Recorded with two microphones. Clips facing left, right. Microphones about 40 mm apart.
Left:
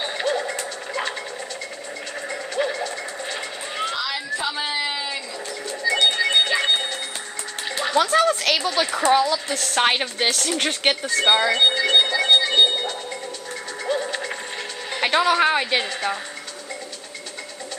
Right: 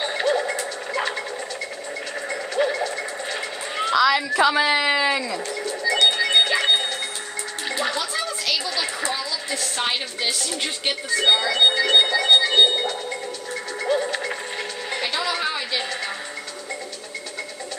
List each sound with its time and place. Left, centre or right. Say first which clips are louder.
0.0 s music: right 2 dB; centre
2.2 s vehicle: right 2 dB; centre
4.0 s a sound: right 8 dB; right
6.0 s music: right 1 dB; centre
8.0 s a woman's voice: left 8 dB; left
11.2 s music: left 1 dB; left
11.5 s music: even; centre
15.0 s music: left 8 dB; left